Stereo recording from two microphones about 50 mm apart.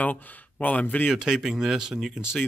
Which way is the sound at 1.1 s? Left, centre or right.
Centre.